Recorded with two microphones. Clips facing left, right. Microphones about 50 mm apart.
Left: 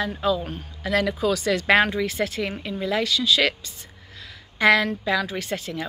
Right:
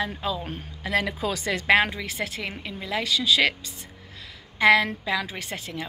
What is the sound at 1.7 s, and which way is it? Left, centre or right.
A woman's voice, centre.